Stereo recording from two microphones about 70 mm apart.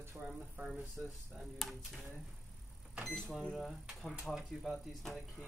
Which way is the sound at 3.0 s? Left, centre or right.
Centre.